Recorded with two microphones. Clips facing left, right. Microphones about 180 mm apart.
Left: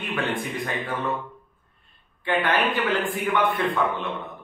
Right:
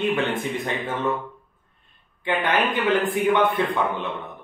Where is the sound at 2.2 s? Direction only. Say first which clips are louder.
Even; 20° right (ahead or behind).